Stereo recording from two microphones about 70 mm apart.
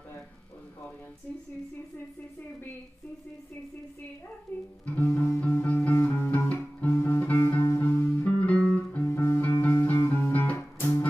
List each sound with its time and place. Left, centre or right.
4.8 s music: left